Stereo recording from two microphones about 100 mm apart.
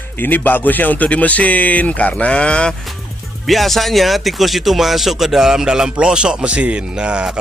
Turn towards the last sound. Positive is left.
turn(degrees=-10)  # may be behind; listen again after turning